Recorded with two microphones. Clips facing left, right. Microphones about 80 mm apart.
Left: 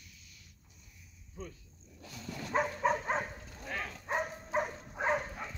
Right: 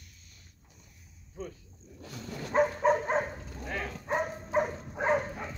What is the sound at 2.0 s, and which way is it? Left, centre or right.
Dog, right.